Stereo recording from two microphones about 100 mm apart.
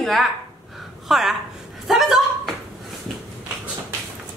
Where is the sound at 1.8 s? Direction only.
5° right (ahead or behind).